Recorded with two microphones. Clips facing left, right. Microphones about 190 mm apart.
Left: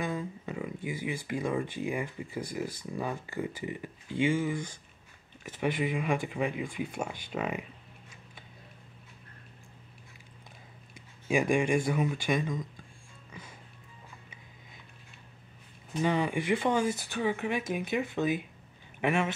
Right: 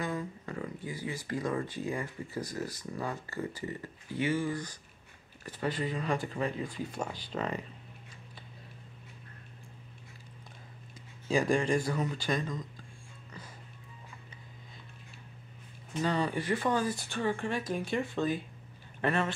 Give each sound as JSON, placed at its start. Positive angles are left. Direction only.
{"t": 0.0, "sound": "a sound", "side_deg": 15}
{"t": 1.2, "sound": "speech", "side_deg": 15}
{"t": 11.2, "sound": "speech", "side_deg": 15}
{"t": 16.0, "sound": "speech", "side_deg": 15}
{"t": 17.1, "sound": "speech", "side_deg": 5}